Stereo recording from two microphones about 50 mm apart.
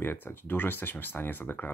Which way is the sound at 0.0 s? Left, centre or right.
Left.